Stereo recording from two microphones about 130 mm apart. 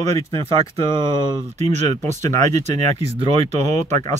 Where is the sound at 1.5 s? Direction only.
65° right (ahead or behind).